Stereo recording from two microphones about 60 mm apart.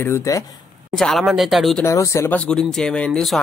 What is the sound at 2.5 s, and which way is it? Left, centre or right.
Speech, centre.